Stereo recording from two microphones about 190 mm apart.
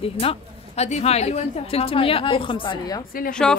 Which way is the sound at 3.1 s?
50° left (ahead or behind).